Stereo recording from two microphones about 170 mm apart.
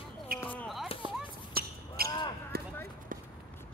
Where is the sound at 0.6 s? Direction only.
Centre (ahead or behind).